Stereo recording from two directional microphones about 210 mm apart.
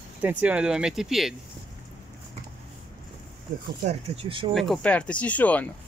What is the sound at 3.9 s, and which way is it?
Speech, 30° right (ahead or behind).